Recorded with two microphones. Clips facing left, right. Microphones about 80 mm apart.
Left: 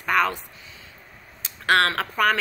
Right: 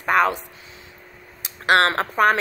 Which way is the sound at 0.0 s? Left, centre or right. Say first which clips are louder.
Right 3 dB; right.